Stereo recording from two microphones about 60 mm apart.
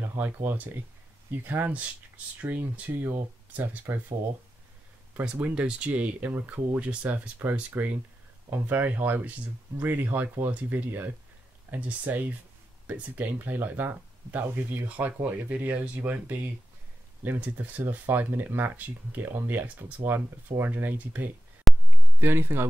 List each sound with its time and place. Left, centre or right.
0.0 s speech: right
3.0 s speech: right
5.2 s speech: centre
21.7 s a sound: centre
22.2 s speech: right